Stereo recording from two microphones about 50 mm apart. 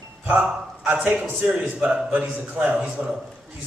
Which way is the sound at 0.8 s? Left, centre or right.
Right.